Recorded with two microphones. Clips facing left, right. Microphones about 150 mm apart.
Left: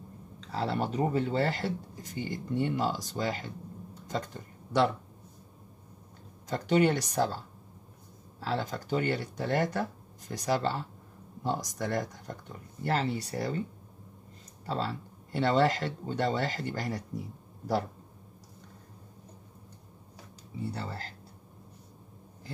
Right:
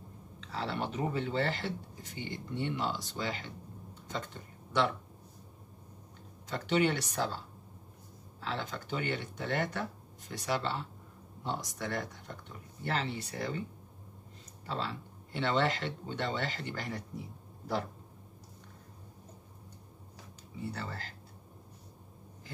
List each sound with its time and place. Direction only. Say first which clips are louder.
0.4 s speech: left 5 dB; 40° left (ahead or behind)
6.5 s speech: left 4 dB; 40° left (ahead or behind)
8.4 s speech: left 5 dB; 40° left (ahead or behind)
14.7 s speech: left 4 dB; 40° left (ahead or behind)
20.7 s speech: left 3 dB; 30° left (ahead or behind)